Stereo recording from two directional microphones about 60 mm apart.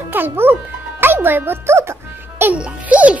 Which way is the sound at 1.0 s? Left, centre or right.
Right.